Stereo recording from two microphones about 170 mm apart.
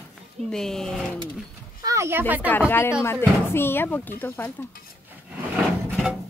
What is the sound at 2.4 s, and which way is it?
Speech, 10° left (ahead or behind).